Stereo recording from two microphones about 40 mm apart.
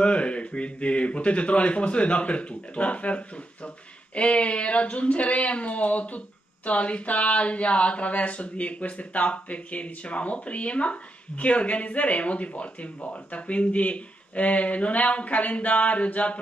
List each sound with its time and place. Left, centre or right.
0.0 s a man's voice: left